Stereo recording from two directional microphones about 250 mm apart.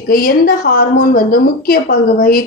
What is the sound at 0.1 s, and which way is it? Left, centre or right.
A woman's voice, left.